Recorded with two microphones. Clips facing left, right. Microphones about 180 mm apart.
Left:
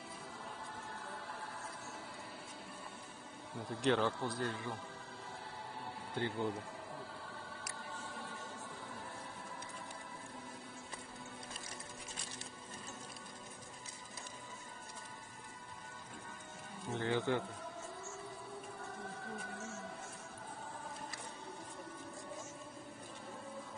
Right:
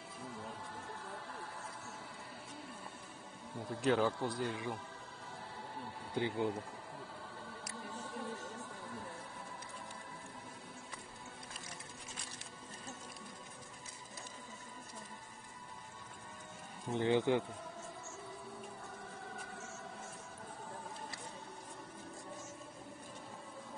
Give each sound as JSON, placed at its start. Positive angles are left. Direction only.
{"t": 3.7, "sound": "speech", "side_deg": -5}
{"t": 6.1, "sound": "speech", "side_deg": -15}
{"t": 16.9, "sound": "speech", "side_deg": -20}